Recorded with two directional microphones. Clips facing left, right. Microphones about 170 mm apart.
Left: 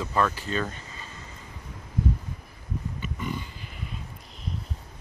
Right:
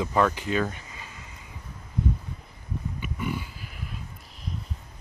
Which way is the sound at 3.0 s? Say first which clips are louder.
Right 3 dB; 10° right (ahead or behind).